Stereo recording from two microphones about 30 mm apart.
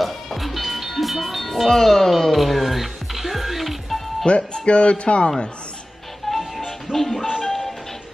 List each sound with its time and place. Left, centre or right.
0.0 s music: centre
2.3 s music: centre
4.2 s speech: left
6.9 s speech: centre
7.4 s music: centre